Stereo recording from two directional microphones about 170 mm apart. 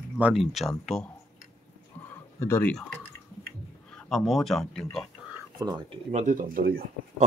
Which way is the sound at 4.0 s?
Centre (ahead or behind).